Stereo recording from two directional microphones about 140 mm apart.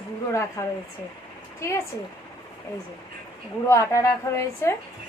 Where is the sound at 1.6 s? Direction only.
20° left (ahead or behind).